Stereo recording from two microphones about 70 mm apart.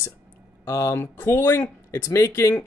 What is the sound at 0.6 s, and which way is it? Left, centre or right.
Speech, left.